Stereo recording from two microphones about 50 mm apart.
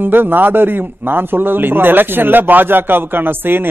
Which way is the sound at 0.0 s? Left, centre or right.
Right.